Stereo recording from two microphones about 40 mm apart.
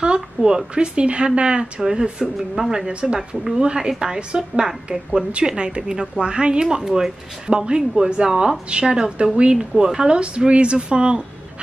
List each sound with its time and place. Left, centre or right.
0.0 s speech: right
2.9 s speech: right
3.2 s speech: centre
10.1 s speech: right